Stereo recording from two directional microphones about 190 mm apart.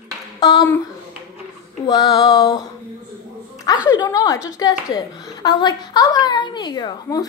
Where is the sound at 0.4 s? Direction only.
20° left (ahead or behind).